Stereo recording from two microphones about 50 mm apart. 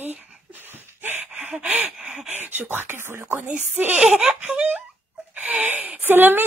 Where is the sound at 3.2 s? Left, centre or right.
Right.